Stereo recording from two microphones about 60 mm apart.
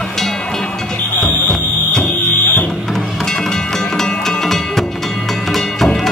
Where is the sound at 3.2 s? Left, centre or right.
Centre.